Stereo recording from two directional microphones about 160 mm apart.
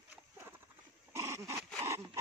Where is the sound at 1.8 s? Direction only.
15° right (ahead or behind).